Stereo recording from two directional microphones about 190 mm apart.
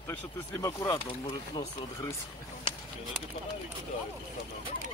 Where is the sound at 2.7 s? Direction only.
25° left (ahead or behind).